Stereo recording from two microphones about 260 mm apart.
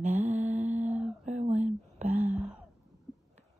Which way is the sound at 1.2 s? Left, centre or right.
Right.